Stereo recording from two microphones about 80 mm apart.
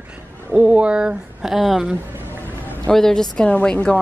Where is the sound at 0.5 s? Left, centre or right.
Centre.